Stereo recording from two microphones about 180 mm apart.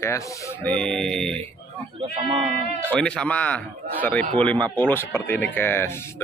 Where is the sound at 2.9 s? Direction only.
5° left (ahead or behind).